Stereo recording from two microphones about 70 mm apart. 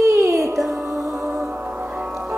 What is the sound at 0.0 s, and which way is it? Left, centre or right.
Music, right.